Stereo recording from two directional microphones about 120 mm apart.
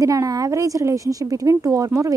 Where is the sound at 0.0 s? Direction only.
25° right (ahead or behind).